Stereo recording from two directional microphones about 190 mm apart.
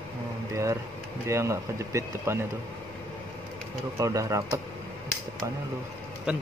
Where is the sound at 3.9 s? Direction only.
15° right (ahead or behind).